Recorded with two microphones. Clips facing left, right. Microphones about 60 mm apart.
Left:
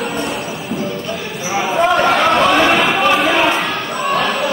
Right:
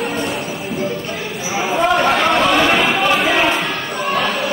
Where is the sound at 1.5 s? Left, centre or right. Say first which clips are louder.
Left 2 dB; centre.